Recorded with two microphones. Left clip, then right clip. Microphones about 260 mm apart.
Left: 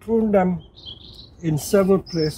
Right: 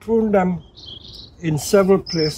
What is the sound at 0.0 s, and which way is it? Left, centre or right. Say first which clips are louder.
Speech: right 2 dB; centre.